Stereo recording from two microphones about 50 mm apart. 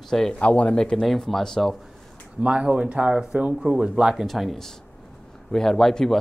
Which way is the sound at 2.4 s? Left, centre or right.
Right.